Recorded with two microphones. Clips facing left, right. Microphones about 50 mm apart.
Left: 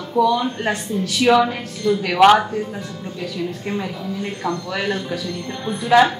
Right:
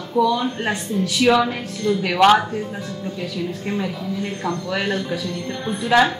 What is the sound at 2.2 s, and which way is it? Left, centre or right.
A woman's voice, centre.